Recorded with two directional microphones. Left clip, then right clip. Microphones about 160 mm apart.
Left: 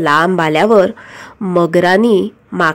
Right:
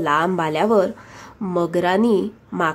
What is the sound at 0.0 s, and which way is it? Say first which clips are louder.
Speech: left 7 dB; 30° left (ahead or behind).